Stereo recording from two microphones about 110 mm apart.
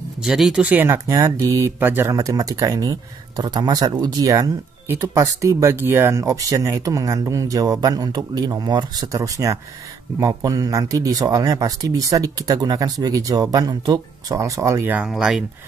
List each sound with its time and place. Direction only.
0.2 s speech: 5° right (ahead or behind)
0.9 s speech: 30° right (ahead or behind)
2.1 s speech: 35° right (ahead or behind)
15.0 s speech: 5° right (ahead or behind)